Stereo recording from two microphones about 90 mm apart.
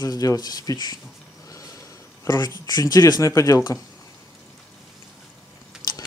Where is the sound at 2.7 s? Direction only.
45° left (ahead or behind).